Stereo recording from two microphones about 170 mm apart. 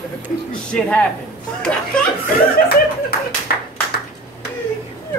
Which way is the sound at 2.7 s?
65° left (ahead or behind).